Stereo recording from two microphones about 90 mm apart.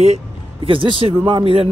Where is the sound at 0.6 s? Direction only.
75° right (ahead or behind).